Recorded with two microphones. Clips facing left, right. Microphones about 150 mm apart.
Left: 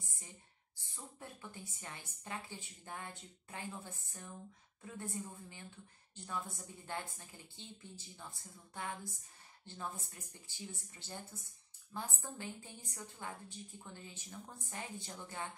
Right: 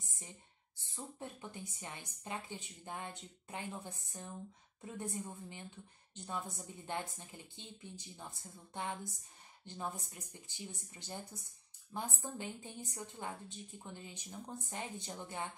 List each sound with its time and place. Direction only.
0.9 s a woman's voice: 20° right (ahead or behind)